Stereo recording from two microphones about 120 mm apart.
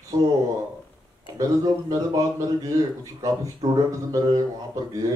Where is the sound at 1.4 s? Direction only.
30° right (ahead or behind).